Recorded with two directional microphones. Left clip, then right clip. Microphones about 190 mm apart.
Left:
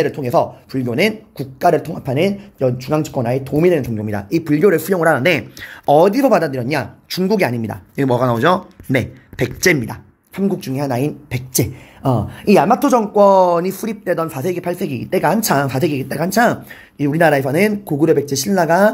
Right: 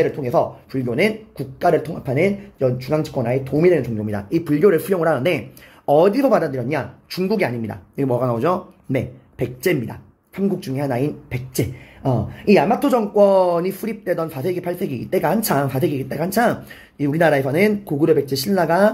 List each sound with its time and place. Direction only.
0.0 s speech: 40° left (ahead or behind)